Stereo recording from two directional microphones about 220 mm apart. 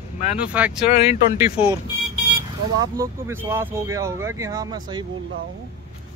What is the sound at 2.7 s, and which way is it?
Speech, 15° right (ahead or behind).